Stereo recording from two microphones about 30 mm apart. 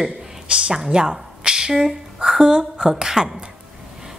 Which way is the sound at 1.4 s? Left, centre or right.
Right.